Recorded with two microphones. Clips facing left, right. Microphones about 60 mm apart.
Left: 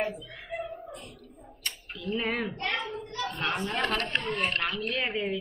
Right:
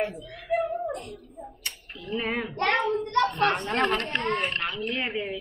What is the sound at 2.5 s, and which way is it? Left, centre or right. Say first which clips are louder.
Speech: right 8 dB; right.